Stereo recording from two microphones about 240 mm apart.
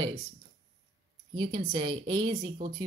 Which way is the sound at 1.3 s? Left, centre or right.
Centre.